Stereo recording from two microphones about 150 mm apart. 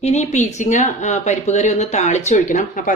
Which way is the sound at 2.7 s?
60° left (ahead or behind).